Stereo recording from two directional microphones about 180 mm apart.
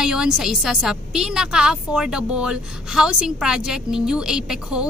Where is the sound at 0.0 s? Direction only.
5° right (ahead or behind).